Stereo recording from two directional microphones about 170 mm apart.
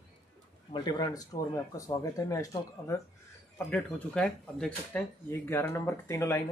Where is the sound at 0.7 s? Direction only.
25° left (ahead or behind).